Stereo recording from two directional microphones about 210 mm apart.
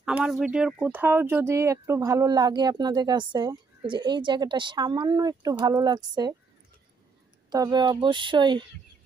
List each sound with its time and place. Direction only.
0.0 s speech: 5° right (ahead or behind)
7.5 s speech: 20° right (ahead or behind)